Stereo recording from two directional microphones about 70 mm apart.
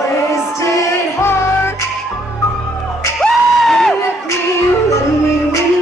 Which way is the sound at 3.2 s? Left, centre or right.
Centre.